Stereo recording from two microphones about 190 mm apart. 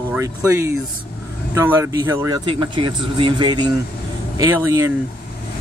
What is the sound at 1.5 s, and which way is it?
Speech, 15° right (ahead or behind).